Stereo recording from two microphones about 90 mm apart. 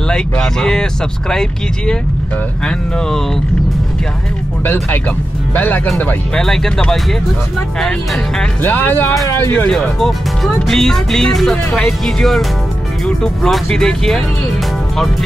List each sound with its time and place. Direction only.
0.1 s speech: 5° left (ahead or behind)
5.5 s speech: 20° left (ahead or behind)
6.3 s speech: 5° left (ahead or behind)
8.6 s speech: 20° left (ahead or behind)
9.7 s speech: 5° left (ahead or behind)